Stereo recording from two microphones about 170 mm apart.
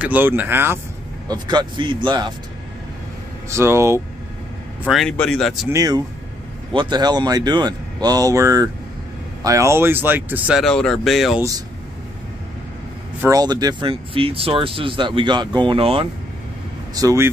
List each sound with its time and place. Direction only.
0.0 s speech: 10° right (ahead or behind)
1.3 s speech: 25° right (ahead or behind)
3.4 s speech: 15° right (ahead or behind)
4.8 s speech: centre (ahead or behind)
5.7 s speech: 20° right (ahead or behind); by 11.4 s centre (ahead or behind)
13.2 s speech: 20° right (ahead or behind)
16.9 s speech: 20° right (ahead or behind)